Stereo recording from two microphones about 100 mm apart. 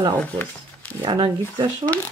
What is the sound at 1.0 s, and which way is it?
Speech, 50° right (ahead or behind).